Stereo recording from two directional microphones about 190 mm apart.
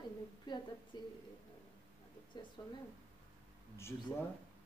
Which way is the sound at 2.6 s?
20° left (ahead or behind).